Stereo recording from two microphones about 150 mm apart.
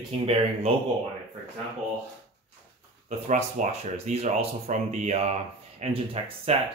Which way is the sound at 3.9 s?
45° right (ahead or behind).